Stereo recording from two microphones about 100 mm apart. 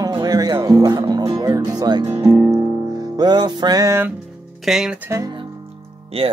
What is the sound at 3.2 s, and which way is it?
Music, 45° right (ahead or behind).